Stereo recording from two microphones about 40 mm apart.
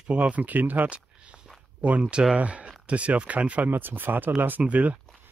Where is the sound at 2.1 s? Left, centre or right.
Right.